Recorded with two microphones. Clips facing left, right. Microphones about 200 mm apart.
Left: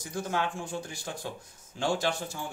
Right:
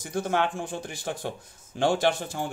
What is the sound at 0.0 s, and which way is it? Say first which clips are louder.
Speech: right 5 dB; 55° right (ahead or behind).